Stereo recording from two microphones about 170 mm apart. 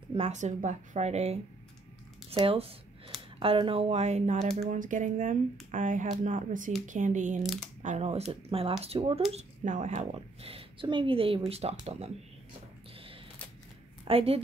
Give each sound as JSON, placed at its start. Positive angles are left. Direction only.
{"t": 0.1, "sound": "a woman's voice", "side_deg": -40}
{"t": 4.7, "sound": "a woman's voice", "side_deg": -50}
{"t": 14.0, "sound": "a woman's voice", "side_deg": -35}